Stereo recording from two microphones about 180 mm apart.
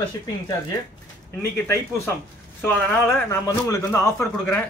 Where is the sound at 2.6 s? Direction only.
10° left (ahead or behind).